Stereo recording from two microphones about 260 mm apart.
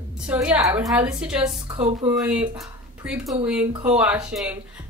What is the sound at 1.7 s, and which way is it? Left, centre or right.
Speech, right.